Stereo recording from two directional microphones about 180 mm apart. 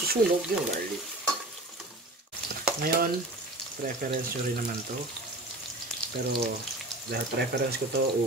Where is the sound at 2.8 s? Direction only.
55° right (ahead or behind).